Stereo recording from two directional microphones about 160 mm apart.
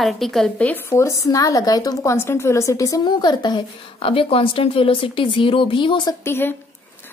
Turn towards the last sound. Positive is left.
turn(degrees=15)  # may be behind; listen again after turning